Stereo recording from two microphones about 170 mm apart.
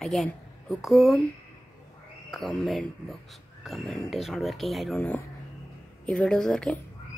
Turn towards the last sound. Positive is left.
turn(degrees=5)  # may be behind; listen again after turning